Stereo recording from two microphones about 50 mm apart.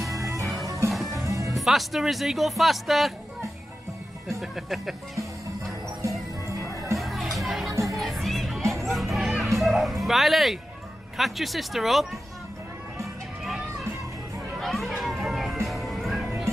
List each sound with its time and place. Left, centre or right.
0.0 s music: centre
1.1 s music: right
1.5 s speech: centre
4.4 s speech: centre
7.0 s music: centre
11.1 s speech: centre
14.6 s music: centre